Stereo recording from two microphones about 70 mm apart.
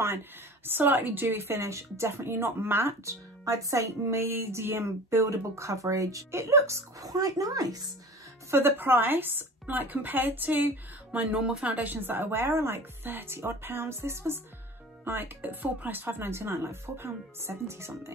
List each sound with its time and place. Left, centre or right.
0.7 s speech: right
3.4 s a woman's voice: right
8.5 s speech: right